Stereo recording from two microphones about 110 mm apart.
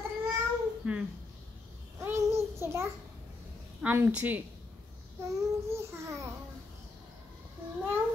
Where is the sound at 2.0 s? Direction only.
25° right (ahead or behind).